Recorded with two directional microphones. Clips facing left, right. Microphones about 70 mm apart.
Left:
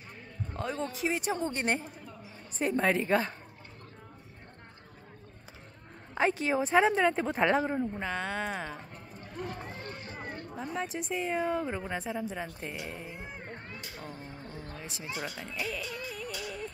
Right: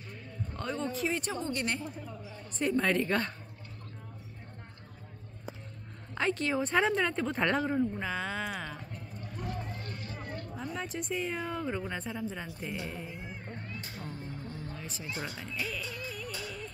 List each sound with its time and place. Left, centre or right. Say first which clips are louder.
0.5 s speech: left 1 dB; centre
1.3 s a woman's voice: left 3 dB; left
2.6 s speech: left 1 dB; centre
6.1 s speech: left 2 dB; centre
8.0 s a woman's voice: left 1 dB; centre
9.5 s run: even; left
10.5 s speech: left 3 dB; centre
13.4 s music: even; left
14.8 s speech: even; centre
15.2 s a woman's voice: left 2 dB; centre
15.7 s music: left 1 dB; centre